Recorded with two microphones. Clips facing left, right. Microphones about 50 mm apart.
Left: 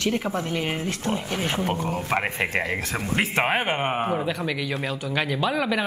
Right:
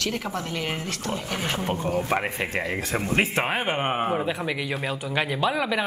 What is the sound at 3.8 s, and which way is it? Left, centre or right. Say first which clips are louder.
Speech: even; centre.